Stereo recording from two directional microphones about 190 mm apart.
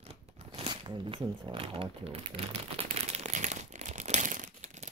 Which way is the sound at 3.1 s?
40° right (ahead or behind).